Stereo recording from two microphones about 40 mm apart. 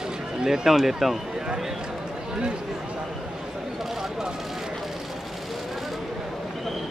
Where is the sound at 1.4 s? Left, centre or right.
Centre.